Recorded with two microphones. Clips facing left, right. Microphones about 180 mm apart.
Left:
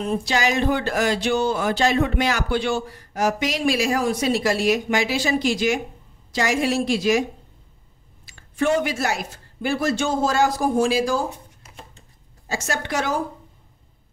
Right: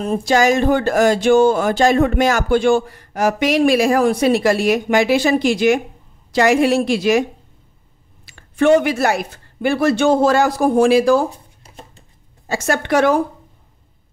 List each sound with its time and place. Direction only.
0.0 s speech: 45° right (ahead or behind); by 7.2 s 65° right (ahead or behind)
8.3 s speech: 65° right (ahead or behind)
11.2 s a sound: 35° right (ahead or behind)
12.4 s speech: 60° right (ahead or behind)